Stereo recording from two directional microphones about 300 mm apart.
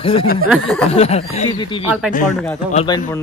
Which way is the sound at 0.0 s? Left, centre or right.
Centre.